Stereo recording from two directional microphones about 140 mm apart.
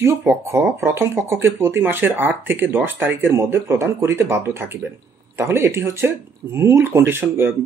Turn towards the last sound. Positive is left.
turn(degrees=-15)  # may be behind; listen again after turning